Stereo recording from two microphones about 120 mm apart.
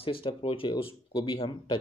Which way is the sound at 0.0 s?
50° left (ahead or behind).